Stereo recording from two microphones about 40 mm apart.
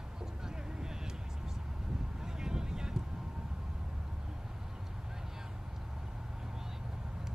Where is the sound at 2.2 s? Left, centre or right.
Centre.